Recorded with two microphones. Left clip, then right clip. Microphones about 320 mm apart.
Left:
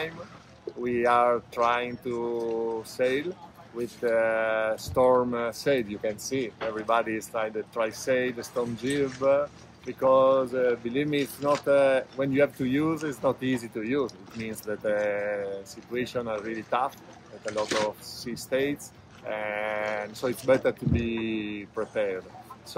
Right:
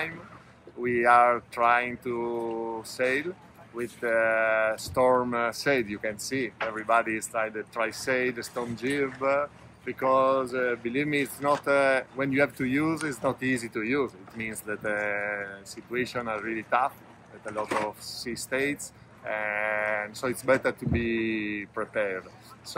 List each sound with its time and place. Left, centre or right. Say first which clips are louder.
0.8 s speech: right 2 dB; centre
17.5 s speech: left 2 dB; centre
18.3 s speech: left 1 dB; centre